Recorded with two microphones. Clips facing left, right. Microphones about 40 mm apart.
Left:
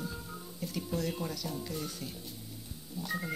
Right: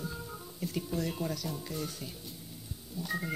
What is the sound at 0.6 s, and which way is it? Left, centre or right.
Speech, centre.